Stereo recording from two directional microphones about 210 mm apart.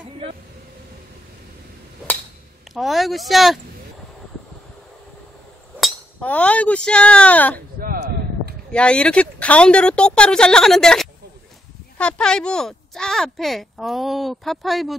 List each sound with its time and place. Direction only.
2.7 s speech: centre (ahead or behind)
5.8 s speech: 5° left (ahead or behind)
7.8 s a sound: 45° right (ahead or behind)
8.7 s speech: 5° left (ahead or behind)